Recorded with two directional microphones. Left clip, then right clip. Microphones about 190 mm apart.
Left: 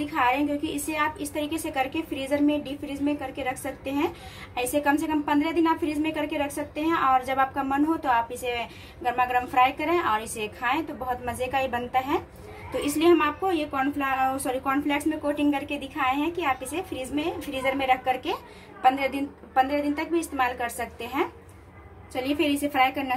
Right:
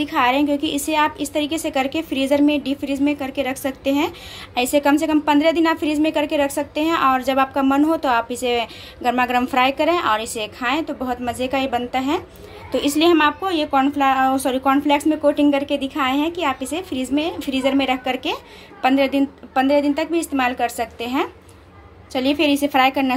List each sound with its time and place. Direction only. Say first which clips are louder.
0.0 s a woman's voice: right 6 dB; 50° right (ahead or behind)